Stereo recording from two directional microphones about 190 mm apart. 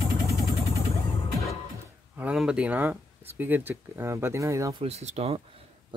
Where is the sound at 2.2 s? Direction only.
5° right (ahead or behind).